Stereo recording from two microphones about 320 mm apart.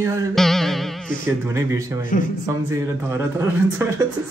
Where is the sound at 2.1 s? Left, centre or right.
Left.